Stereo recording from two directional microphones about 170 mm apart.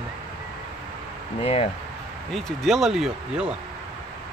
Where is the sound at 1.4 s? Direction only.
35° left (ahead or behind).